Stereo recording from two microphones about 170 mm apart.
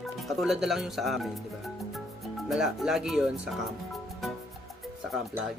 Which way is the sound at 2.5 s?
Centre (ahead or behind).